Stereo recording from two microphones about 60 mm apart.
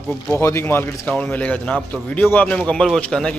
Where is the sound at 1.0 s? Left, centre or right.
Left.